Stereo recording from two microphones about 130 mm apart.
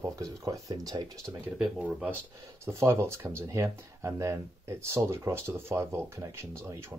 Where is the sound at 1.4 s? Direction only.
10° right (ahead or behind).